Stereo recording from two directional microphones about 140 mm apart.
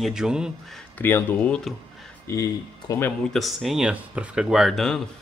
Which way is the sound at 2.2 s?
25° left (ahead or behind).